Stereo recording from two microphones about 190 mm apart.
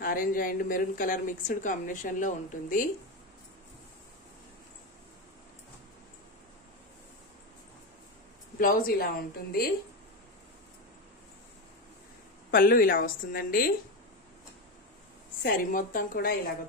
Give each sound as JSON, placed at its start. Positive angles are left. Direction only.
{"t": 0.0, "sound": "a woman's voice", "side_deg": 45}
{"t": 8.5, "sound": "a woman's voice", "side_deg": 50}
{"t": 12.4, "sound": "a woman's voice", "side_deg": 50}
{"t": 15.4, "sound": "a woman's voice", "side_deg": 45}